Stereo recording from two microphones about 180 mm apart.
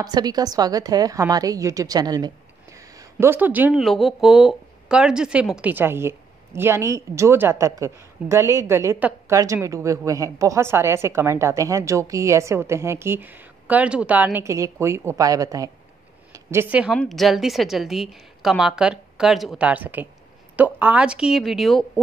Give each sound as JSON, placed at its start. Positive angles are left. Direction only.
{"t": 0.0, "sound": "a woman's voice", "side_deg": -20}
{"t": 16.7, "sound": "a woman's voice", "side_deg": -5}